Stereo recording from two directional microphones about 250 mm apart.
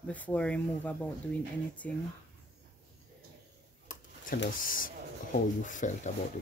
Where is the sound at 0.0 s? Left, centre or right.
Centre.